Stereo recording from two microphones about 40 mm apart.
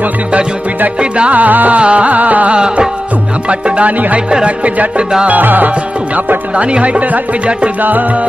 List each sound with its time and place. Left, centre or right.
1.3 s speech: right
1.8 s speech: right
2.5 s music: right
4.5 s speech: right
5.3 s music: right
6.5 s speech: right